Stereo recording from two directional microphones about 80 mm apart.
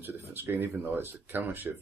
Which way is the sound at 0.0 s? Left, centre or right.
Right.